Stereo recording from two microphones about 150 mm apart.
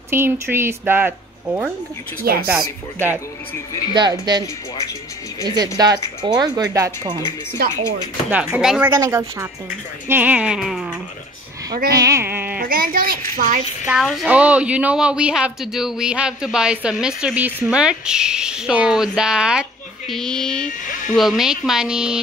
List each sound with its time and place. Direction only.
0.1 s speech: 15° right (ahead or behind)
2.3 s speech: 80° right
3.9 s speech: 30° right (ahead or behind)
8.3 s speech: 5° right (ahead or behind)
8.9 s speech: 20° right (ahead or behind); by 11.0 s centre (ahead or behind)
11.9 s speech: 20° right (ahead or behind)
12.5 s a child's voice: 70° right (ahead or behind)
13.8 s a woman's voice: centre (ahead or behind)
20.9 s speech: 60° left (ahead or behind)
21.2 s a woman's voice: centre (ahead or behind)